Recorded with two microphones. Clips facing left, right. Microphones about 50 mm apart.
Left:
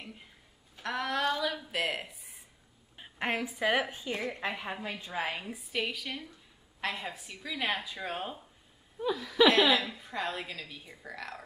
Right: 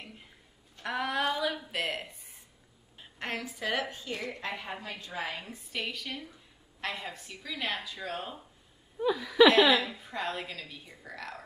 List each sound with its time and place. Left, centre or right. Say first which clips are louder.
0.8 s a sound: even; centre
3.0 s a woman's voice: left 4 dB; centre
5.3 s a woman's voice: left 3 dB; centre
9.0 s a woman's voice: right 3 dB; centre